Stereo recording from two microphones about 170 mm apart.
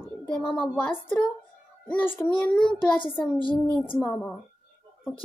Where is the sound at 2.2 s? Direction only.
20° left (ahead or behind).